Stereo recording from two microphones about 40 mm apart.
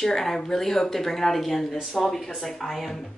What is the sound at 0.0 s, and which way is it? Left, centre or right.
A woman's voice, centre.